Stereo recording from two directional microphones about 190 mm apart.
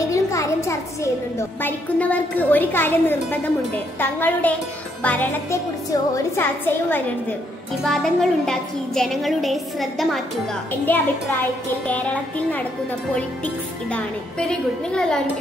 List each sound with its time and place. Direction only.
0.1 s a sound: 15° left (ahead or behind)
1.6 s a woman's voice: 10° left (ahead or behind)
10.9 s a woman's voice: 10° left (ahead or behind)
14.5 s a woman's voice: 5° left (ahead or behind)